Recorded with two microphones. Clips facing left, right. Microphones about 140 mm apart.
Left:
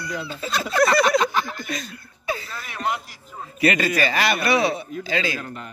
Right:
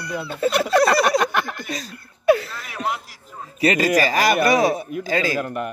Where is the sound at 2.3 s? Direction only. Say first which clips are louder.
Right 12 dB; 70° right (ahead or behind).